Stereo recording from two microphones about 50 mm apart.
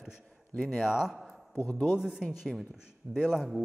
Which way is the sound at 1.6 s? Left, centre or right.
Left.